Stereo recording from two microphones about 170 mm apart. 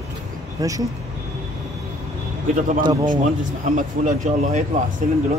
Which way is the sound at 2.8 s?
25° right (ahead or behind).